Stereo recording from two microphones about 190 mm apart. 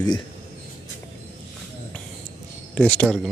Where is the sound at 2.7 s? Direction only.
5° left (ahead or behind).